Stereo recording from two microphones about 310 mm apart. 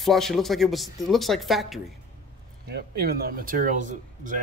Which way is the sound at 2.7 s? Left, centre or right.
Right.